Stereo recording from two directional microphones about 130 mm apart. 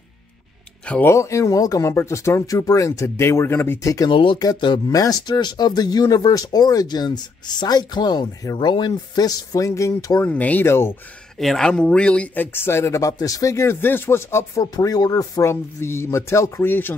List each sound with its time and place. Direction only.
0.8 s speech: 10° left (ahead or behind)
1.1 s speech: 25° left (ahead or behind)
4.1 s speech: 40° left (ahead or behind); by 10.2 s 25° left (ahead or behind)
10.2 s speech: 10° left (ahead or behind)
11.3 s speech: centre (ahead or behind)